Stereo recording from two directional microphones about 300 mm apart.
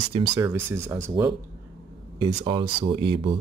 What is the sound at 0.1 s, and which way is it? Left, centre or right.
Speech, centre.